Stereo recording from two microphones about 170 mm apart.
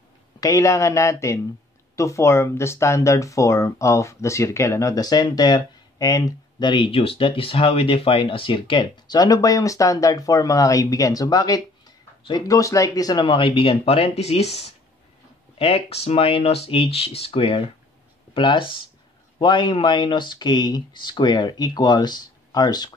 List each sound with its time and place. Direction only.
0.4 s speech: 20° left (ahead or behind)